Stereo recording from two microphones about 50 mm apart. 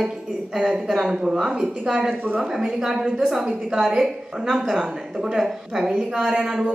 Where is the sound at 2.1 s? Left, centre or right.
Right.